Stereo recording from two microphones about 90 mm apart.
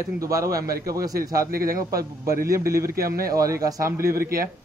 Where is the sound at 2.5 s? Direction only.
35° right (ahead or behind).